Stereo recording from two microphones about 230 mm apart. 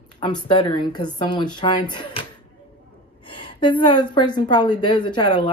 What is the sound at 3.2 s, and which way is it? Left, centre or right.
A woman's voice, left.